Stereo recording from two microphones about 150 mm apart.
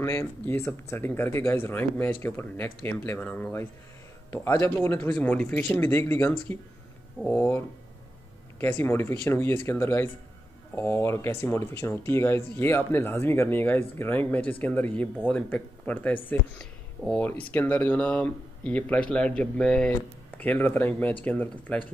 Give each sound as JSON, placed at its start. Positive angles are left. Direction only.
{"t": 0.0, "sound": "speech", "side_deg": 15}